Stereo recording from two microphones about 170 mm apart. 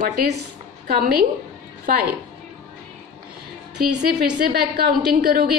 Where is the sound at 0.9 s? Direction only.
65° right (ahead or behind).